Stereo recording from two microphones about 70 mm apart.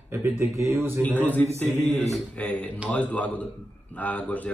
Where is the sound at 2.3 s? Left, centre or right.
Centre.